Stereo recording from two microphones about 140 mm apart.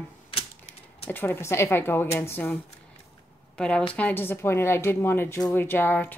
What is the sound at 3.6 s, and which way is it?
Speech, 5° left (ahead or behind).